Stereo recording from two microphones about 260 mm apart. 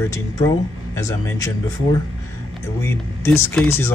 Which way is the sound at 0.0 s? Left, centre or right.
Centre.